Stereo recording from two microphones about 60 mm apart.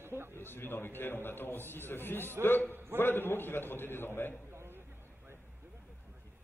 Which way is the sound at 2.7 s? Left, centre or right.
Right.